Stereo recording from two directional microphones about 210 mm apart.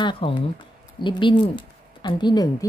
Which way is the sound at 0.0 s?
25° left (ahead or behind).